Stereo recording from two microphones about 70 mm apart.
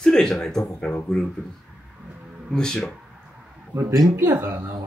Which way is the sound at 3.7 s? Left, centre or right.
Right.